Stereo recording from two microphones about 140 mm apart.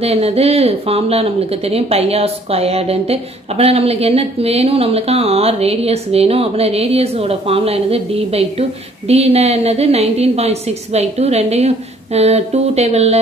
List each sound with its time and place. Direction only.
0.0 s speech: 45° right (ahead or behind)